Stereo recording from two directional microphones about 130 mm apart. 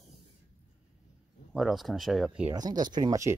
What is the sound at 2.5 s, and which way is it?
Speech, 30° right (ahead or behind).